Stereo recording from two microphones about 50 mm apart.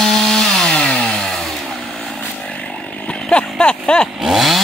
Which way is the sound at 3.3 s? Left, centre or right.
Left.